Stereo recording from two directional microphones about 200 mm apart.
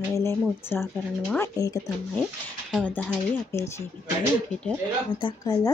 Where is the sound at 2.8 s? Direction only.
5° left (ahead or behind).